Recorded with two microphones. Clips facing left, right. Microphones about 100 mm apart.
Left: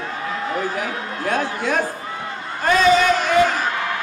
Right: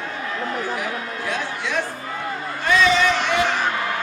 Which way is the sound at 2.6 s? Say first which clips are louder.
Left 3 dB; 45° left (ahead or behind).